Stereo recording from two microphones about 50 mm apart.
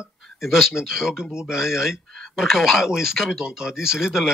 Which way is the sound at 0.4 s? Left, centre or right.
Centre.